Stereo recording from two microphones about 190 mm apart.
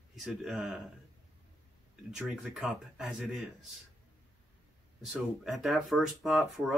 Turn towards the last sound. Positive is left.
turn(degrees=0)  # may be behind; listen again after turning